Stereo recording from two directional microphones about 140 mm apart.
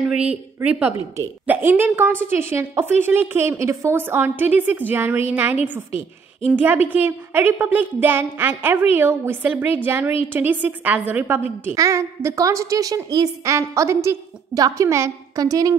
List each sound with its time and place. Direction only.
0.6 s a woman's voice: 15° right (ahead or behind)